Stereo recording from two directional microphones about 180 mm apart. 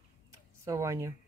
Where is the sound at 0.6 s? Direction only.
15° right (ahead or behind).